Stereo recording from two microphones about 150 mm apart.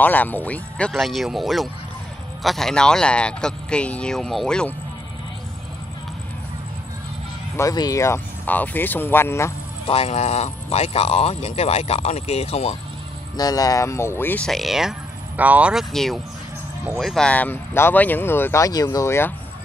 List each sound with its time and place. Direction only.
0.0 s speech: 10° left (ahead or behind)
7.5 s speech: 25° left (ahead or behind)
9.8 s speech: 40° left (ahead or behind)
13.4 s speech: 25° left (ahead or behind)